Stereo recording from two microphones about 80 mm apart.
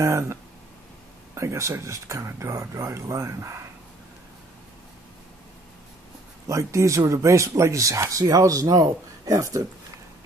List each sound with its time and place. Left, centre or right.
0.0 s speech: right
6.4 s speech: right